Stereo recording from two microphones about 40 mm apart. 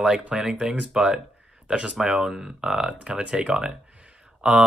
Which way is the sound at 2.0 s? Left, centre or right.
Centre.